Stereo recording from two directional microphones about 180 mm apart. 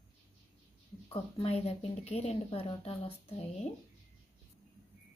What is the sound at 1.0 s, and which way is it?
Speech, 30° left (ahead or behind).